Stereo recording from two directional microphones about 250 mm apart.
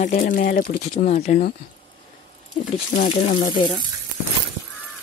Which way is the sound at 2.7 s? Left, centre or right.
Left.